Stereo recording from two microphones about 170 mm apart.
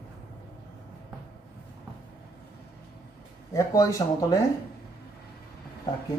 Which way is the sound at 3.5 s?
20° left (ahead or behind).